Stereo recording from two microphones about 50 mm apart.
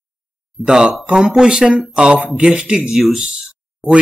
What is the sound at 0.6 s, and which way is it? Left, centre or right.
Speech, centre.